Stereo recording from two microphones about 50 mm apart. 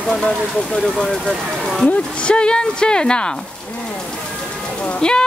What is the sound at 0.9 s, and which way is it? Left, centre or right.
Speech, centre.